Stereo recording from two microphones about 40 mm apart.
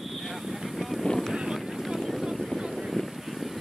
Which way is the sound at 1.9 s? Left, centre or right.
Centre.